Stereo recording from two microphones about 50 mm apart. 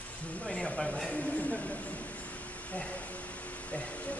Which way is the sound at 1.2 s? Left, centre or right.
Left.